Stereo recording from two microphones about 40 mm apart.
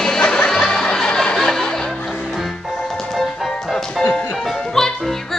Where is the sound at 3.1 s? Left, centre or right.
Centre.